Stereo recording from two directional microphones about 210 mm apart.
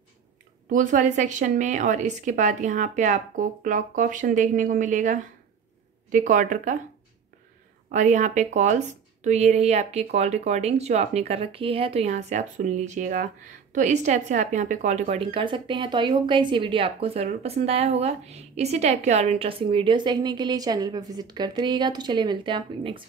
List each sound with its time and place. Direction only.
0.7 s a woman's voice: 40° right (ahead or behind)
7.9 s a woman's voice: 35° right (ahead or behind)